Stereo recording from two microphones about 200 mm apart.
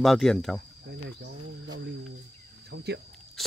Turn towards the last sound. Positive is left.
turn(degrees=0)  # may be behind; listen again after turning